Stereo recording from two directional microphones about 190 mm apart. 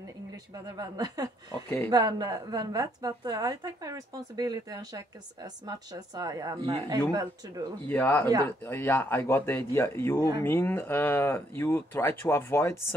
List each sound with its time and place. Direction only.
0.7 s a woman's voice: 20° right (ahead or behind)
7.8 s speech: 10° left (ahead or behind)